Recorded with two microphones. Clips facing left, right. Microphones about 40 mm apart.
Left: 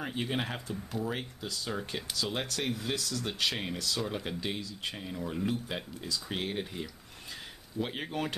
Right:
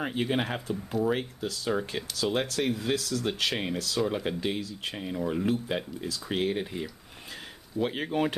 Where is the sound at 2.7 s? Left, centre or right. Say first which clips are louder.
Right 5 dB; right.